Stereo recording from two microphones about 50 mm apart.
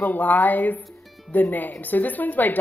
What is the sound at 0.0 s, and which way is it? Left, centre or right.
A woman's voice, left.